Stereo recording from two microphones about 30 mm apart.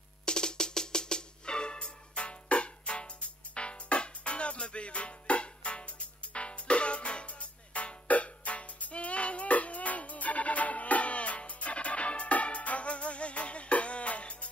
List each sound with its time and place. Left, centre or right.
0.2 s music: left
2.1 s music: left